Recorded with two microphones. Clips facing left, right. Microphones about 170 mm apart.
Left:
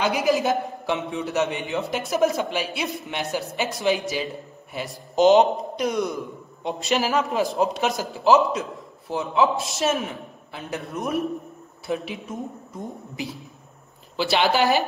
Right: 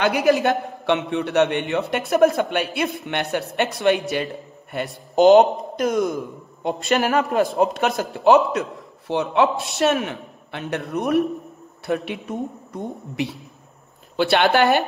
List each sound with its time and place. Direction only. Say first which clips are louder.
0.0 s a man's voice: right 3 dB; centre (ahead or behind)
14.1 s speech: right 4 dB; 55° right (ahead or behind)
14.6 s a man's voice: right 3 dB; centre (ahead or behind)